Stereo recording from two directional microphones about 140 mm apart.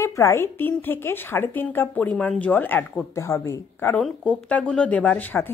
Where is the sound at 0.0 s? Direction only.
20° left (ahead or behind).